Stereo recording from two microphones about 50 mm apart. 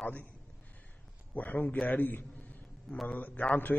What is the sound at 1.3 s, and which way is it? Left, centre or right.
Speech, left.